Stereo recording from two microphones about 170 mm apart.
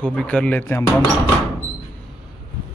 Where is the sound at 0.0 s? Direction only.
5° left (ahead or behind).